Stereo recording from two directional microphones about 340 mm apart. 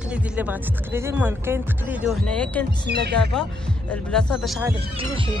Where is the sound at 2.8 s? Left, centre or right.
Right.